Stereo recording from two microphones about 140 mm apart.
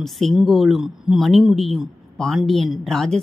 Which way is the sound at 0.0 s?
Centre (ahead or behind).